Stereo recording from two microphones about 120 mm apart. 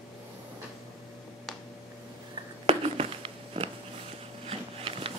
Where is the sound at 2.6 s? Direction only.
55° right (ahead or behind).